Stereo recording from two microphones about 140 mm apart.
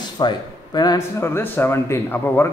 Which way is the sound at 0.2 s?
35° left (ahead or behind).